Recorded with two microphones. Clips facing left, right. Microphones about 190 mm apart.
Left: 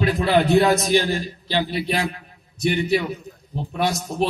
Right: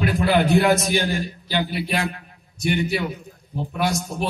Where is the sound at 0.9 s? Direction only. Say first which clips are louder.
Left 2 dB; 35° left (ahead or behind).